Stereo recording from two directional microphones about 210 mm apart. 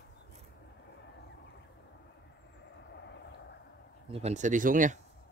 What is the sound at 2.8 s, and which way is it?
Vehicle, 55° left (ahead or behind).